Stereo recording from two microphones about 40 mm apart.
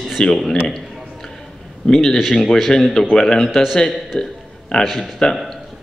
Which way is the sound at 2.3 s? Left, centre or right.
Centre.